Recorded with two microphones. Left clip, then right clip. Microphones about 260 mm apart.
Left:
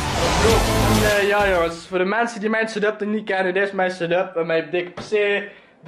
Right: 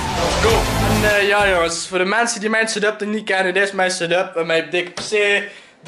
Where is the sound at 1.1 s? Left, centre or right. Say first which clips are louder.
Right 5 dB; centre.